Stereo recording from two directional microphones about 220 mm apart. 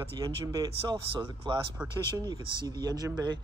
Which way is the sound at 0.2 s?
15° right (ahead or behind).